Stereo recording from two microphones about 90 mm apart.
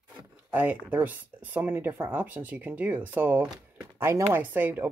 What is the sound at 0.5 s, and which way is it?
Speech, 15° right (ahead or behind).